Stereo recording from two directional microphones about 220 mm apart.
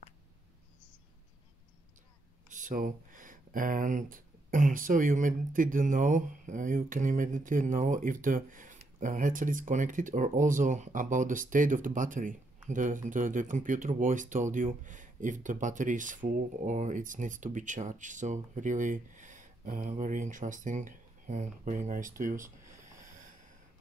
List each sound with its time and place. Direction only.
2.5 s speech: 35° right (ahead or behind)